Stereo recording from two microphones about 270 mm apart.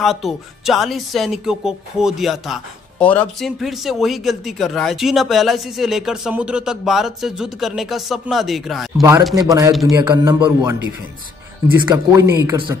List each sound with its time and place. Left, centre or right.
0.0 s speech: centre
9.3 s a man's voice: centre
11.8 s a man's voice: centre